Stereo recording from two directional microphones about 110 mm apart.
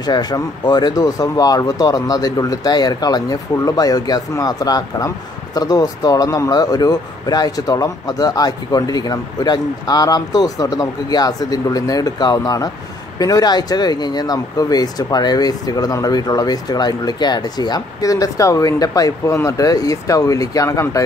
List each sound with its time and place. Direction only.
0.0 s speech: 40° left (ahead or behind)